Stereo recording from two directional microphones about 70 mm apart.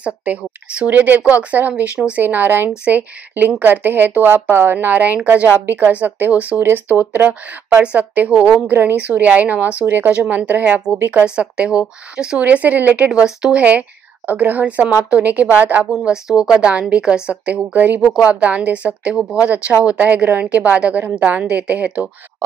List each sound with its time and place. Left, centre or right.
0.0 s speech: right
11.2 s a woman's voice: centre
15.9 s a woman's voice: centre